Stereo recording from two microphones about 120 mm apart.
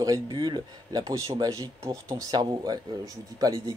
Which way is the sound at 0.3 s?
35° right (ahead or behind).